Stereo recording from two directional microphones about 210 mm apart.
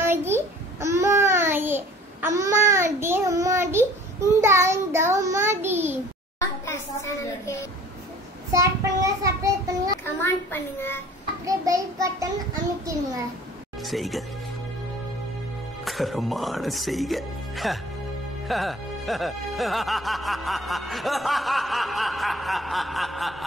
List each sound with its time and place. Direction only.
0.0 s babbling: 10° right (ahead or behind)
2.3 s child singing: 15° right (ahead or behind)
6.6 s a sound: 15° left (ahead or behind)
8.5 s child singing: 15° right (ahead or behind)
10.0 s a child's voice: 10° left (ahead or behind)
11.4 s child singing: 15° right (ahead or behind)
12.9 s a child's voice: 15° right (ahead or behind)
13.8 s speech: centre (ahead or behind)
15.8 s speech: centre (ahead or behind)